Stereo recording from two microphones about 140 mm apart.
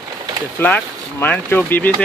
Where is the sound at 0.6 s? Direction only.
15° left (ahead or behind).